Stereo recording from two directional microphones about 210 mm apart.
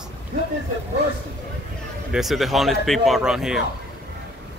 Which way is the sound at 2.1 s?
Centre (ahead or behind).